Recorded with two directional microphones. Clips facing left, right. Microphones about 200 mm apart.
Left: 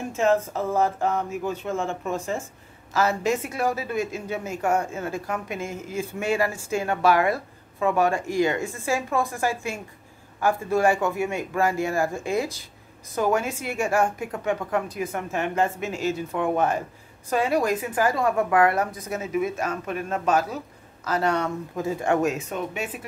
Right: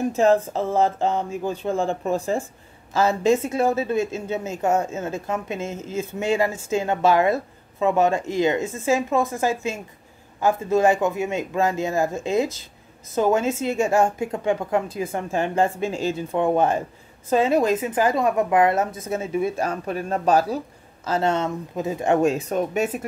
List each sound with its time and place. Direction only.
0.1 s a woman's voice: 35° right (ahead or behind)